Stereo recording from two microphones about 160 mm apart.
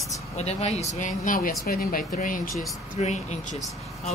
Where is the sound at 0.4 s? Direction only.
40° left (ahead or behind).